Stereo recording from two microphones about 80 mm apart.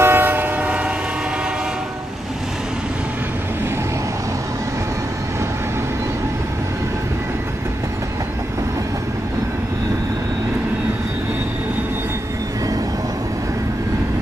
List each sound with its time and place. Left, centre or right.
0.0 s train: right